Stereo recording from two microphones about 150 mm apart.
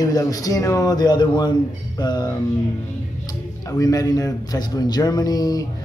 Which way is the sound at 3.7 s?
25° left (ahead or behind).